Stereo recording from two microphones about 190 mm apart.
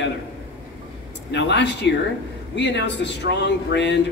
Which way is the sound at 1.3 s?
65° left (ahead or behind).